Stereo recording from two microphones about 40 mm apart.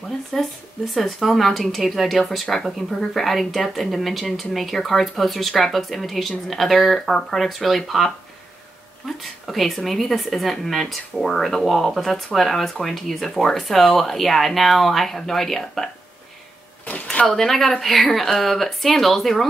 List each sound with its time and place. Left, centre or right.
0.3 s speech: centre
16.8 s speech: left
17.3 s speech: centre